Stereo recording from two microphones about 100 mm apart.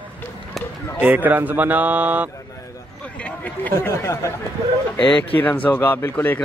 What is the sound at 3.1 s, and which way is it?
Speech, 15° left (ahead or behind).